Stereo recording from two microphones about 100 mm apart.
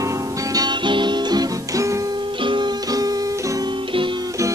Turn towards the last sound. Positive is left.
turn(degrees=-40)  # may be behind; listen again after turning